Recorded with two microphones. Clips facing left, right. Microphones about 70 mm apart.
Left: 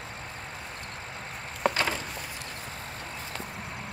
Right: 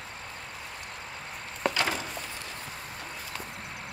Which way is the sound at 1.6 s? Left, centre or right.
Left.